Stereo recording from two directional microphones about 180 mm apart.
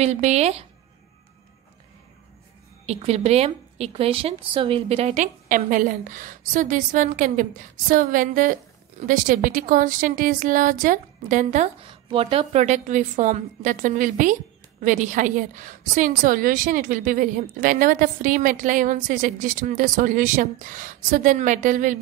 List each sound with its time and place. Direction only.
0.0 s speech: 40° right (ahead or behind)
2.9 s a woman's voice: 35° right (ahead or behind)
11.8 s a woman's voice: 30° right (ahead or behind); by 21.9 s 45° right (ahead or behind)